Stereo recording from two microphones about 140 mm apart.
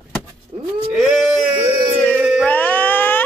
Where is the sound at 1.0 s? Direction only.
5° right (ahead or behind).